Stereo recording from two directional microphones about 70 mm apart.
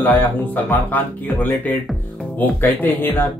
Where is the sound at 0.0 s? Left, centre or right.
Left.